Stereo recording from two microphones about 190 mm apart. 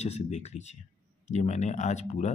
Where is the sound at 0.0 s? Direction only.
35° left (ahead or behind).